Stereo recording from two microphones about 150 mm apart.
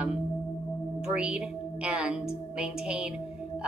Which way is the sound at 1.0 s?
5° right (ahead or behind).